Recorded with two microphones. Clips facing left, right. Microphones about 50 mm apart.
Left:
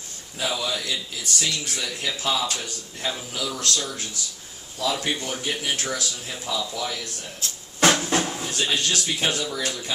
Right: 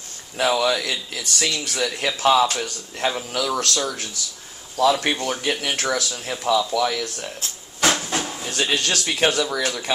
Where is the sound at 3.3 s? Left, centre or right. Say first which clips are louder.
Right 5 dB; right.